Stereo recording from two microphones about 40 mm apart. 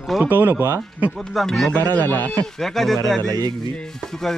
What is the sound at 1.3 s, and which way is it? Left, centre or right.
Speech, centre.